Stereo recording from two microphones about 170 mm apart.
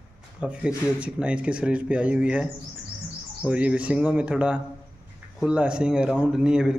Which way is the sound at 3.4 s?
5° right (ahead or behind).